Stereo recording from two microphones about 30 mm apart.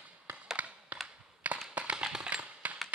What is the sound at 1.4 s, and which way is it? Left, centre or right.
Tap, right.